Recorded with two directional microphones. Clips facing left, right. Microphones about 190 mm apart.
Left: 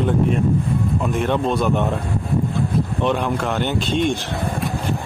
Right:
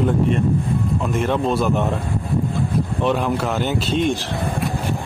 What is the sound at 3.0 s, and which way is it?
A man's voice, centre (ahead or behind).